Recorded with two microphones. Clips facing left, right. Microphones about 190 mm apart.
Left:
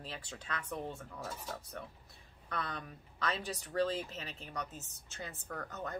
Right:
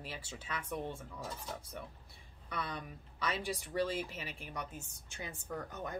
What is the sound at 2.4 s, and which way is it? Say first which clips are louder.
Speech: even; 10° right (ahead or behind).